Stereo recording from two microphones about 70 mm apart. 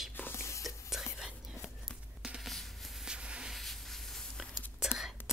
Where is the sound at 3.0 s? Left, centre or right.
Centre.